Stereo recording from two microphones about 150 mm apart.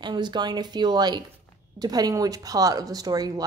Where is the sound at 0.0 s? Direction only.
30° right (ahead or behind).